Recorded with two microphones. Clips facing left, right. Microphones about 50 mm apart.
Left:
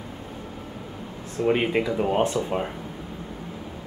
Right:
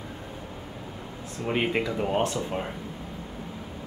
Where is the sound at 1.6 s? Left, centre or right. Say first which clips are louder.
Left 3 dB; centre.